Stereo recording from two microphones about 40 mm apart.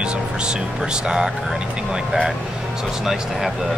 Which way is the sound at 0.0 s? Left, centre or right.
Right.